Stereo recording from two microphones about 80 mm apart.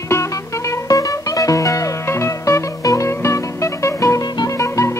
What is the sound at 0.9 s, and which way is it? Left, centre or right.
Music, left.